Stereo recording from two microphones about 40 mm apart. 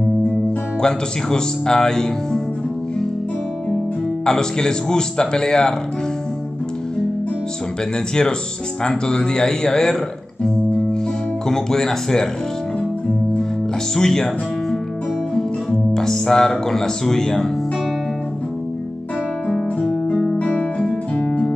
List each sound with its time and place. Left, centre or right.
0.7 s speech: centre
4.3 s speech: centre
8.8 s speech: left
10.4 s music: centre
11.4 s speech: centre
13.9 s speech: centre
19.8 s guitar: centre
20.3 s guitar: left